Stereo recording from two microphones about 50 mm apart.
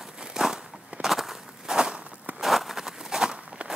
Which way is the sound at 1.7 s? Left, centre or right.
Centre.